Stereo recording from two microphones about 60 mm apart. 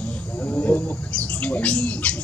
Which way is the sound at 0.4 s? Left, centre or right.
Left.